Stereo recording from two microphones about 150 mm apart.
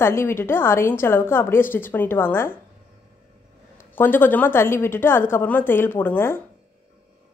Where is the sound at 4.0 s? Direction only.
15° left (ahead or behind).